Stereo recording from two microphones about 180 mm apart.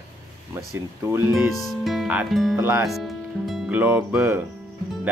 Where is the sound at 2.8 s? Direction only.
Centre (ahead or behind).